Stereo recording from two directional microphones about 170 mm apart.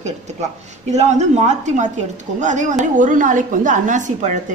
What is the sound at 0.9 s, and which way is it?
A woman's voice, 40° right (ahead or behind).